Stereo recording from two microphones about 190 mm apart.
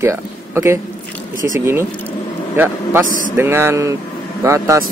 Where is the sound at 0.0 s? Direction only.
15° right (ahead or behind).